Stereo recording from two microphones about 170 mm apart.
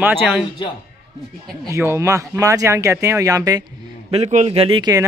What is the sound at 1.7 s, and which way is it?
Speech, 15° right (ahead or behind).